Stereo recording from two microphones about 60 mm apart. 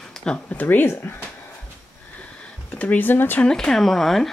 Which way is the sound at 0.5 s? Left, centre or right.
Left.